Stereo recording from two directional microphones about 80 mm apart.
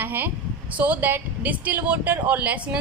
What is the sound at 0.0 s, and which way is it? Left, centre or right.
A woman's voice, right.